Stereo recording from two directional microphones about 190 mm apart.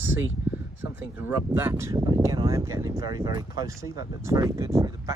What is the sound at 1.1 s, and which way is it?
Speech, 10° right (ahead or behind).